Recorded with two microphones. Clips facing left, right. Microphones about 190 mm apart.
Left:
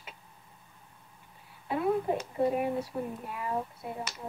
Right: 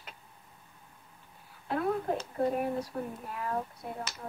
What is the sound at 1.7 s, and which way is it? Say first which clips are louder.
Speech: left 2 dB; 5° left (ahead or behind).